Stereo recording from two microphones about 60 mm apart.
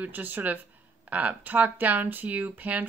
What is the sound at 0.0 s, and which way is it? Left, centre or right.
Speech, right.